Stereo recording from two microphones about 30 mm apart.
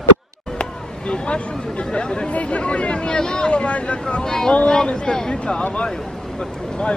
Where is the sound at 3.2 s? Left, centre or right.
Left.